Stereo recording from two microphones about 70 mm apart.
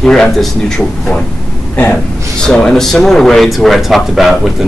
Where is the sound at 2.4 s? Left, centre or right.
Centre.